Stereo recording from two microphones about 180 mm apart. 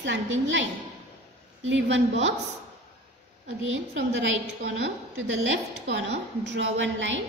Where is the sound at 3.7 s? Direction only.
90° right.